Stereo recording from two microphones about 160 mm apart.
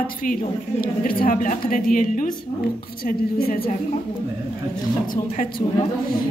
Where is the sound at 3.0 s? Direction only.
70° left (ahead or behind).